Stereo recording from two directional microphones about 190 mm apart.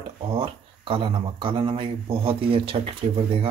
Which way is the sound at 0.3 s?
30° right (ahead or behind).